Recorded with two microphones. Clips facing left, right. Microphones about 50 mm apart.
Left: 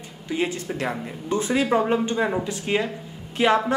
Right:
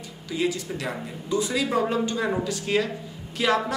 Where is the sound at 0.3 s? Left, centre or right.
Left.